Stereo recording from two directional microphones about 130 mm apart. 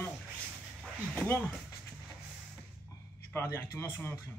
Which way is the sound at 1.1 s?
5° left (ahead or behind).